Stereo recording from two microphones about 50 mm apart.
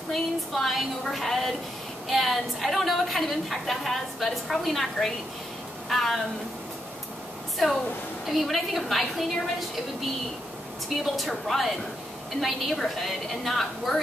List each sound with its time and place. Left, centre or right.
0.1 s a woman's voice: centre
8.3 s a woman's voice: centre
11.1 s a woman's voice: centre